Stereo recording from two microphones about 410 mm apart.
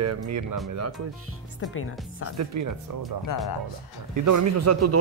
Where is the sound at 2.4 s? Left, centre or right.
Right.